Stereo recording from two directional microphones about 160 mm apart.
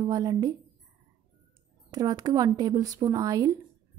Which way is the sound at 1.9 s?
25° right (ahead or behind).